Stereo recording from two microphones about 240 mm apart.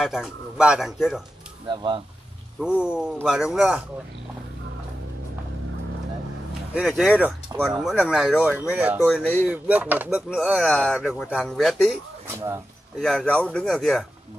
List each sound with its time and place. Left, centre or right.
0.0 s speech: centre
1.7 s speech: centre
2.6 s speech: centre
6.7 s speech: centre
9.0 s speech: centre
9.5 s speech: centre
13.0 s speech: centre